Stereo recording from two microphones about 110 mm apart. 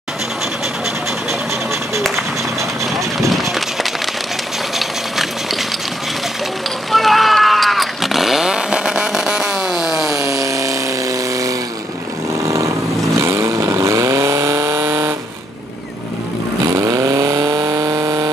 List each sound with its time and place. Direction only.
2.0 s run: centre (ahead or behind)
4.7 s a sound: centre (ahead or behind)
6.9 s vehicle: centre (ahead or behind)
10.0 s a sound: 25° right (ahead or behind)
13.2 s vehicle: 25° right (ahead or behind)
16.6 s vehicle: 35° right (ahead or behind)